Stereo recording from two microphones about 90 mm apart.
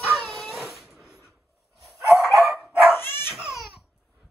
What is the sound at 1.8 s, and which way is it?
Dog, 5° right (ahead or behind).